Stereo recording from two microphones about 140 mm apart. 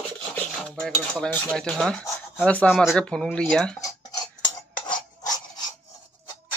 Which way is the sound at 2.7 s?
Centre (ahead or behind).